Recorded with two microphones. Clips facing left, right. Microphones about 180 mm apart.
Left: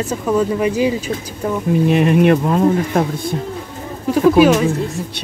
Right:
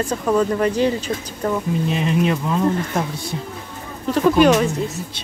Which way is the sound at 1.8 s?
60° left (ahead or behind).